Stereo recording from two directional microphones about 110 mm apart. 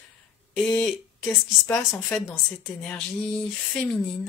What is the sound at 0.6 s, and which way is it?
Speech, 15° left (ahead or behind).